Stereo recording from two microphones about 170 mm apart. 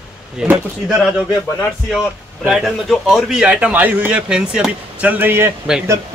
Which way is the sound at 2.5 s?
Centre (ahead or behind).